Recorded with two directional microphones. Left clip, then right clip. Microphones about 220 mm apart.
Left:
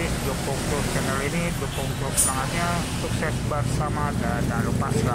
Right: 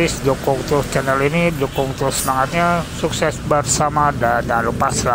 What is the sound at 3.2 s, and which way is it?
Speech, 30° right (ahead or behind).